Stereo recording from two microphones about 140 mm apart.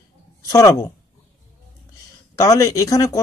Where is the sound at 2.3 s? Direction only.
20° left (ahead or behind).